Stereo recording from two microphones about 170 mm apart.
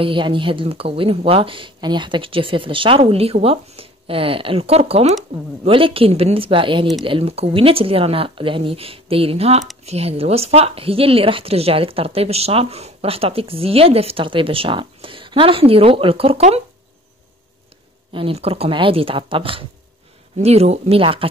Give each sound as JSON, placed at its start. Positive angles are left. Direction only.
{"t": 0.0, "sound": "speech", "side_deg": -30}
{"t": 18.1, "sound": "speech", "side_deg": -35}